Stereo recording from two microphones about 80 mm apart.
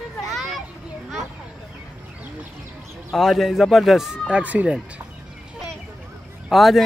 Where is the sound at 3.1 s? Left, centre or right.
Centre.